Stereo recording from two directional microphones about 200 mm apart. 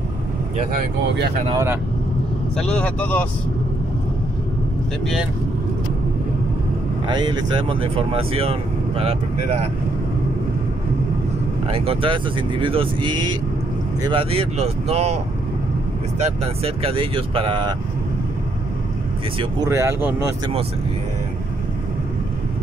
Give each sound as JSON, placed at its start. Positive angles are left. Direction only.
{"t": 0.7, "sound": "speech", "side_deg": -60}
{"t": 1.5, "sound": "speech", "side_deg": -15}
{"t": 2.5, "sound": "speech", "side_deg": 5}
{"t": 7.1, "sound": "speech", "side_deg": -20}
{"t": 11.6, "sound": "speech", "side_deg": -30}
{"t": 16.2, "sound": "speech", "side_deg": -30}
{"t": 19.6, "sound": "speech", "side_deg": -15}